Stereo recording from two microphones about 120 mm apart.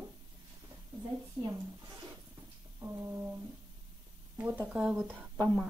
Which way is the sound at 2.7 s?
20° right (ahead or behind).